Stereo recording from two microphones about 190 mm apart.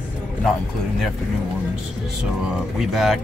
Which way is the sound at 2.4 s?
5° right (ahead or behind).